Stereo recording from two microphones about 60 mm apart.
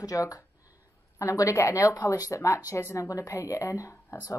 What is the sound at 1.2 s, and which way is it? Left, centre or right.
Speech, left.